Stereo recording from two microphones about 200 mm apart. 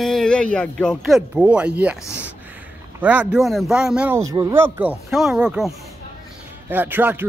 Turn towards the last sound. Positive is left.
turn(degrees=-10)  # may be behind; listen again after turning